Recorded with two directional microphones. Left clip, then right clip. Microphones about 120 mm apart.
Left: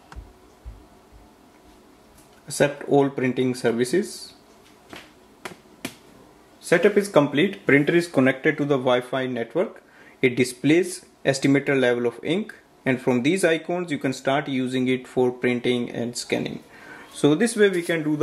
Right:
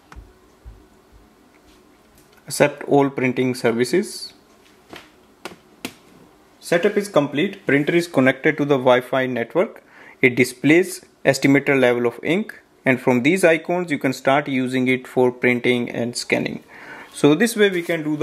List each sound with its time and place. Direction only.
2.4 s speech: 40° right (ahead or behind)
6.7 s speech: 10° right (ahead or behind)
7.7 s speech: 25° right (ahead or behind)
17.6 s speech: 20° right (ahead or behind)